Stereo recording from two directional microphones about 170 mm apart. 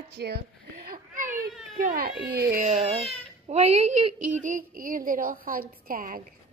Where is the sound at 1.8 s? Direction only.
55° right (ahead or behind).